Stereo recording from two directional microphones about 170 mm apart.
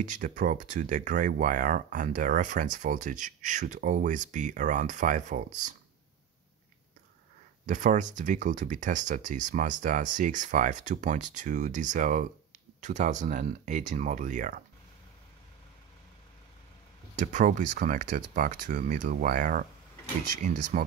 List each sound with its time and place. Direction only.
0.0 s speech: 50° right (ahead or behind)
7.6 s speech: 45° right (ahead or behind)
17.1 s speech: 45° right (ahead or behind)
20.7 s speech: 45° right (ahead or behind)